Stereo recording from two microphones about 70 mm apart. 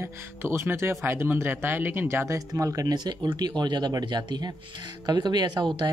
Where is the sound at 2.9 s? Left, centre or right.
Right.